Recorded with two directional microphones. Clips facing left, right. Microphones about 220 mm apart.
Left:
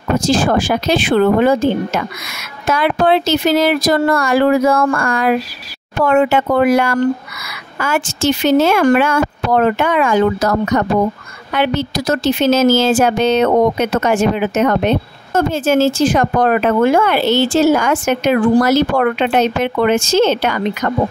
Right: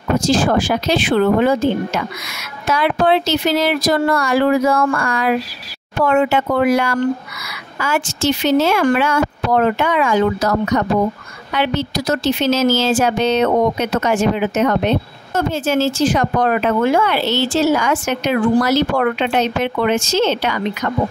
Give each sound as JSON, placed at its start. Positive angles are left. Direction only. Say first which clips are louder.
{"t": 0.3, "sound": "speech", "louder": "left 1 dB", "side_deg": 50}
{"t": 2.6, "sound": "speech", "louder": "left 2 dB", "side_deg": 50}